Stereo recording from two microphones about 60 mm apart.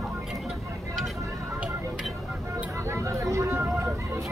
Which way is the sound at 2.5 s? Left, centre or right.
Right.